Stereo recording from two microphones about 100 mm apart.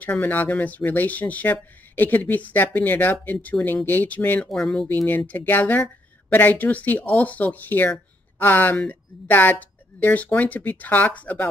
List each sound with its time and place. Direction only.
0.0 s speech: 15° left (ahead or behind)
4.5 s speech: centre (ahead or behind)
4.8 s speech: 20° left (ahead or behind)